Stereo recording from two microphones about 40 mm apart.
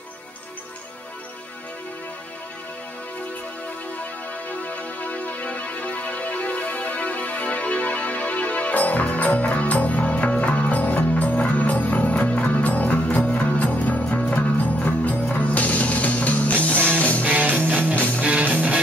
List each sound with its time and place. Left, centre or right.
4.6 s music: left
12.2 s music: left
12.6 s music: left
13.5 s music: left
17.2 s music: right
18.2 s music: right